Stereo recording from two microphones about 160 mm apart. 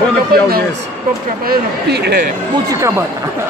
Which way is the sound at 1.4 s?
85° right.